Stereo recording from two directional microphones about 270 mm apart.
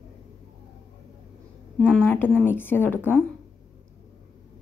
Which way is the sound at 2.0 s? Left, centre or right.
Centre.